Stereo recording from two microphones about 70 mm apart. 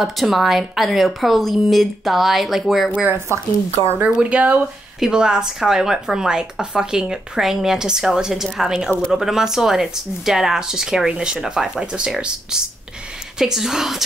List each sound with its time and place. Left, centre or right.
0.0 s speech: centre
3.3 s speech: right
4.2 s speech: centre